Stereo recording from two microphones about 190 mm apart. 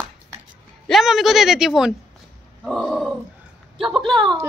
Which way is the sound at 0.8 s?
Centre (ahead or behind).